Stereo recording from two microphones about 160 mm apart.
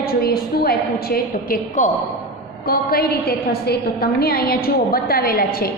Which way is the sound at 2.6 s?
75° left (ahead or behind).